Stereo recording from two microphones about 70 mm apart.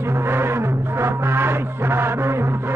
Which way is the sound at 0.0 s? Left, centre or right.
Right.